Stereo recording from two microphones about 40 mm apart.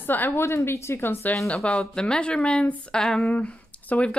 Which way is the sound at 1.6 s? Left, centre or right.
Left.